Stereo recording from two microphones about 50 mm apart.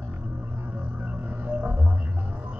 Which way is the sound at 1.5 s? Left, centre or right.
Right.